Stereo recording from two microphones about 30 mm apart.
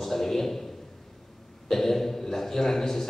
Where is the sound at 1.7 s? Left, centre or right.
Centre.